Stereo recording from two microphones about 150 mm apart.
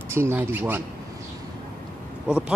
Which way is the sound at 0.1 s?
15° right (ahead or behind).